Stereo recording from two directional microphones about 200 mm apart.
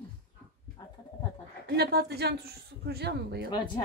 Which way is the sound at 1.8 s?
55° right (ahead or behind).